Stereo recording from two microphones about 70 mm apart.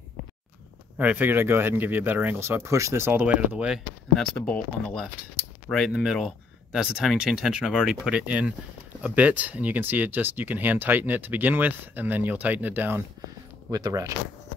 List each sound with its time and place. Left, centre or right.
0.9 s speech: right
3.3 s speech: centre
4.5 s speech: centre
5.9 s speech: centre; by 13.0 s right
13.7 s speech: right